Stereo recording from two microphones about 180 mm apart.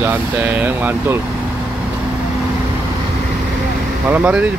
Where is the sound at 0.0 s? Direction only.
10° right (ahead or behind).